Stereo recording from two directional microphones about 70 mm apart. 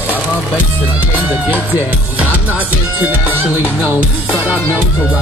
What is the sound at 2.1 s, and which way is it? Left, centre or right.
Speech, right.